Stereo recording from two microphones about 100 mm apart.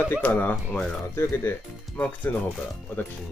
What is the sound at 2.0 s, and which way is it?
Speech, 15° left (ahead or behind).